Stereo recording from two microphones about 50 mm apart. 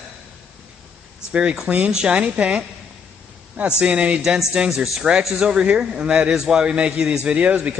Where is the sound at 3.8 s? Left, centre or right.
Right.